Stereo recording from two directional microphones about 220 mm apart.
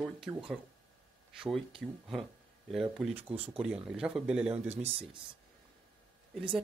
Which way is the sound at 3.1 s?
25° right (ahead or behind).